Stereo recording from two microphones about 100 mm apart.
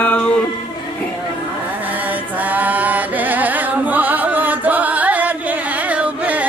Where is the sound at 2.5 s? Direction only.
15° right (ahead or behind).